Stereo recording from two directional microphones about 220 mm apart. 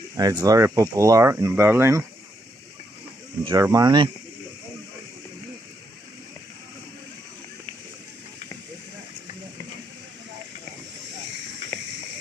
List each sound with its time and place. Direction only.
0.1 s speech: 15° right (ahead or behind)
3.4 s speech: 15° right (ahead or behind)